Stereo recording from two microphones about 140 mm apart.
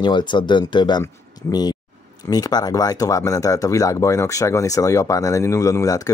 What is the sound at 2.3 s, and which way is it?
Speech, 30° left (ahead or behind).